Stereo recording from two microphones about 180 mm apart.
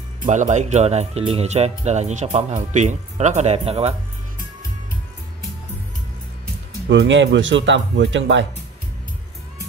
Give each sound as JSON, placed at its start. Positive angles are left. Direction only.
{"t": 0.3, "sound": "speech", "side_deg": -40}
{"t": 6.9, "sound": "speech", "side_deg": -90}